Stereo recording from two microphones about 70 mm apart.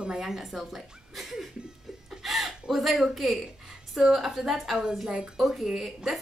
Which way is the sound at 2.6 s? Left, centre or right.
Centre.